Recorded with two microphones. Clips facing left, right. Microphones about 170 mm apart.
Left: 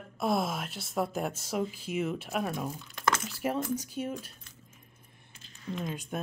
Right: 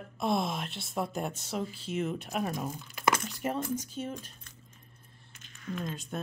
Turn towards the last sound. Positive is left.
turn(degrees=10)  # may be behind; listen again after turning